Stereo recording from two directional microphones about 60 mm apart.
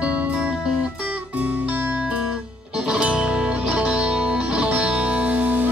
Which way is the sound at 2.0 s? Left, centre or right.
Centre.